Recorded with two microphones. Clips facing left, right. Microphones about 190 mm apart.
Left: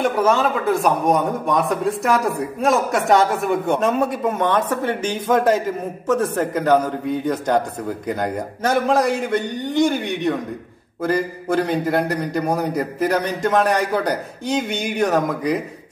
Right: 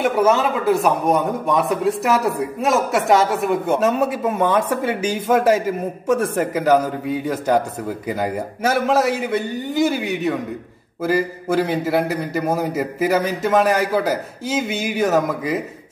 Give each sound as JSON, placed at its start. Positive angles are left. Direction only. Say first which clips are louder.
{"t": 0.0, "sound": "a man's voice", "louder": "right 1 dB", "side_deg": -5}